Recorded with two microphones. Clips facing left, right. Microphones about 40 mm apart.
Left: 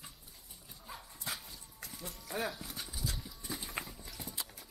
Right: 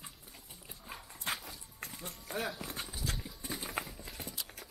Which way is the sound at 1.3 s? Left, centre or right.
Right.